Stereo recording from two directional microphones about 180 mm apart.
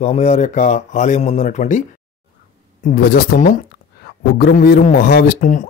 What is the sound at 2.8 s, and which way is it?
A man's voice, 55° left (ahead or behind).